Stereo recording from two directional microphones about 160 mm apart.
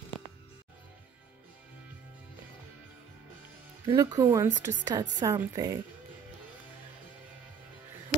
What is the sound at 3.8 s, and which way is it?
A woman's voice, 20° right (ahead or behind).